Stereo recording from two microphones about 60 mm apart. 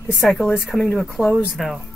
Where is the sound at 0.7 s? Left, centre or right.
Centre.